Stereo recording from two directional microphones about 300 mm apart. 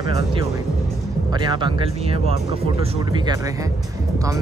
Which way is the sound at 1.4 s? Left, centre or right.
Centre.